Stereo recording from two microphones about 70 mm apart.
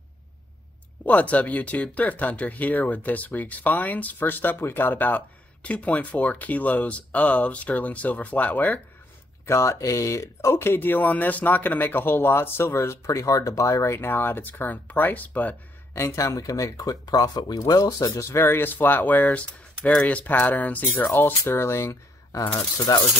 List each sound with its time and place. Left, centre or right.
1.0 s speech: left
9.5 s speech: left
13.0 s speech: left
15.9 s speech: left
21.1 s speech: left
22.9 s speech: left